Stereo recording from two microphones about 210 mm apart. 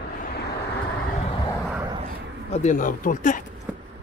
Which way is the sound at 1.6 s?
5° right (ahead or behind).